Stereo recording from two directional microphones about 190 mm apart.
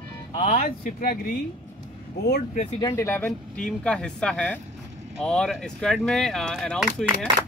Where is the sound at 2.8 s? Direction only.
15° left (ahead or behind).